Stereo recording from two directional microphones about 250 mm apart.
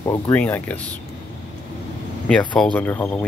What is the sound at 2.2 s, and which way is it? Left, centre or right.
Speech, centre.